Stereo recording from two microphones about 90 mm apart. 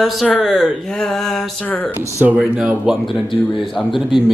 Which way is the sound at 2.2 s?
15° right (ahead or behind).